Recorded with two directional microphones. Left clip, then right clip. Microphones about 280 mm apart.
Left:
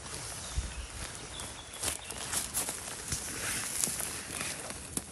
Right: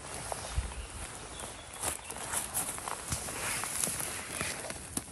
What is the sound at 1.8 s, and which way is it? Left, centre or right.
Walk, centre.